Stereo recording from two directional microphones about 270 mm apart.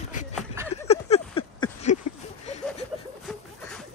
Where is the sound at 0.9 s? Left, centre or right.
Left.